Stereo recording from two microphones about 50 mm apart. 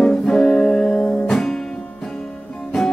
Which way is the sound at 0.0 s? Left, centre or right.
Centre.